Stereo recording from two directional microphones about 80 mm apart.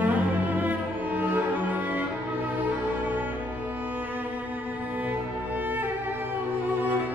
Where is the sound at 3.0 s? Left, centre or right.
Right.